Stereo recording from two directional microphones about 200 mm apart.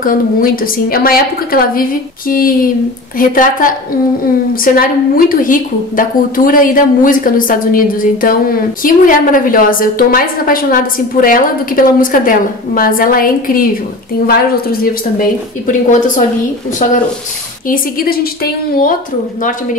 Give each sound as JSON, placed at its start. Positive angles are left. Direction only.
{"t": 0.0, "sound": "a woman's voice", "side_deg": 45}
{"t": 17.6, "sound": "a woman's voice", "side_deg": 45}